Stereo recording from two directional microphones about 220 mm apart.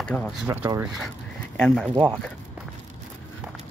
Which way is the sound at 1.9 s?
20° right (ahead or behind).